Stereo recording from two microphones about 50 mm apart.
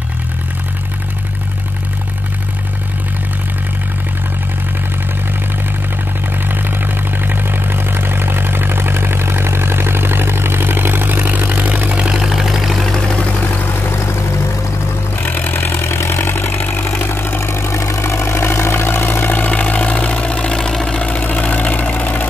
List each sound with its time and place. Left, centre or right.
6.5 s vehicle: right
12.2 s vehicle: centre
15.6 s vehicle: left
16.3 s vehicle: left
17.5 s vehicle: left; by 21.0 s centre
21.0 s vehicle: left